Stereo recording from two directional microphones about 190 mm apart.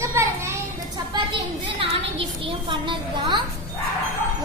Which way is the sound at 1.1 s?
25° right (ahead or behind).